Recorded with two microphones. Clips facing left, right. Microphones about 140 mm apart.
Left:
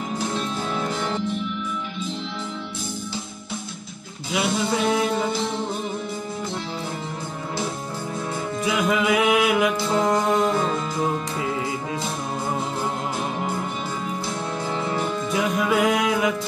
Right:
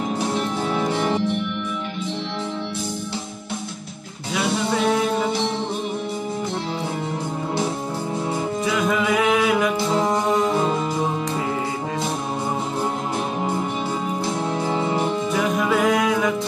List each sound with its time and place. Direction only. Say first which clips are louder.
0.7 s music: right 5 dB; 20° right (ahead or behind)
4.3 s music: right 1 dB; centre (ahead or behind)
8.7 s music: left 1 dB; 5° left (ahead or behind)
14.7 s music: right 2 dB; 15° right (ahead or behind)
15.5 s music: right 1 dB; centre (ahead or behind)